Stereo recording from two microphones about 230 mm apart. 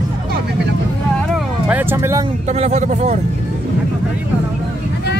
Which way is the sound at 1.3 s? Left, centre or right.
Centre.